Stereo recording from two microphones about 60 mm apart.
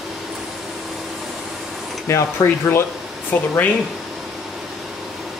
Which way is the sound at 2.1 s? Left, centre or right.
Left.